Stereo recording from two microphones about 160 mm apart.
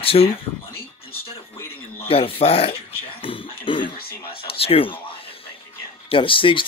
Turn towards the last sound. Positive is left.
turn(degrees=30)  # may be behind; listen again after turning